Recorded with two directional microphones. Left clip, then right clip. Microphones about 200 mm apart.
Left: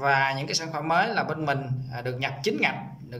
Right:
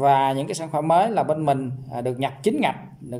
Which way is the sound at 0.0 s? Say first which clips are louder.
Right 5 dB; 25° right (ahead or behind).